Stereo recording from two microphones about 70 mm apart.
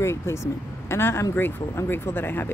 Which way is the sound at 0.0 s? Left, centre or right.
Left.